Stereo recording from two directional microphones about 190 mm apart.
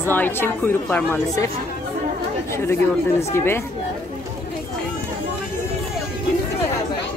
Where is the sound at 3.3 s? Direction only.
10° left (ahead or behind).